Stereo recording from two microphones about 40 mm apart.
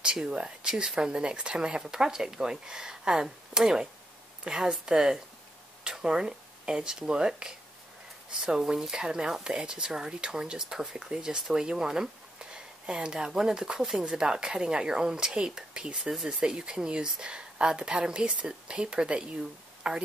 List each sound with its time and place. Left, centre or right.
0.0 s a woman's voice: right